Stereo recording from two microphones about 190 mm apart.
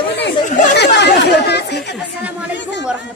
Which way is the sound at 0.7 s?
60° left (ahead or behind).